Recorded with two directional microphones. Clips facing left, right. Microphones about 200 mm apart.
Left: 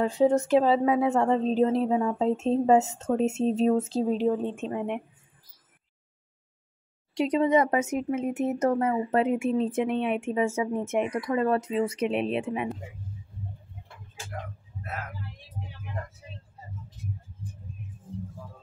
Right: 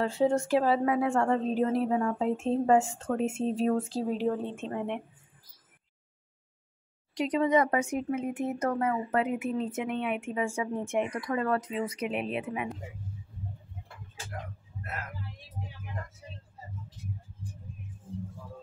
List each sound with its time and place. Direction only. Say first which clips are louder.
0.0 s speech: left 4 dB; 20° left (ahead or behind)
7.2 s speech: left 3 dB; 25° left (ahead or behind)